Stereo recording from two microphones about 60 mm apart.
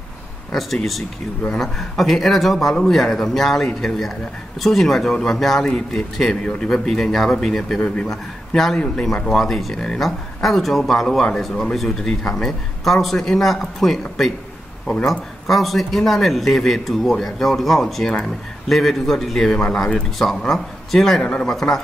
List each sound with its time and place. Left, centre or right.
0.5 s a man's voice: centre
7.8 s a man's voice: centre
8.1 s a man's voice: centre
15.4 s a man's voice: centre